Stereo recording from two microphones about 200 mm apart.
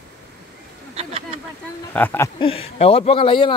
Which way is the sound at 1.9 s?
10° left (ahead or behind).